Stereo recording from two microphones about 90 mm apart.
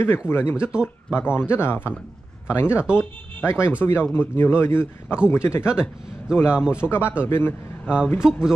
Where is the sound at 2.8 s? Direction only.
10° right (ahead or behind).